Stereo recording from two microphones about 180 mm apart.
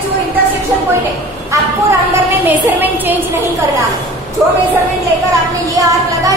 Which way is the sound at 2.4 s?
10° right (ahead or behind).